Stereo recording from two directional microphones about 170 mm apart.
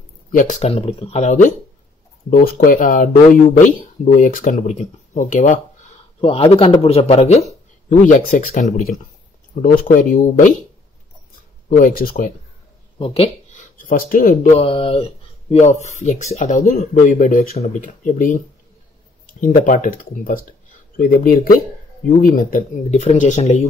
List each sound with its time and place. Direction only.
0.3 s speech: 50° left (ahead or behind)
6.2 s speech: 35° left (ahead or behind)
11.7 s speech: 55° left (ahead or behind)
13.0 s speech: 35° left (ahead or behind)
13.6 s speech: 55° left (ahead or behind)
14.5 s speech: 35° left (ahead or behind)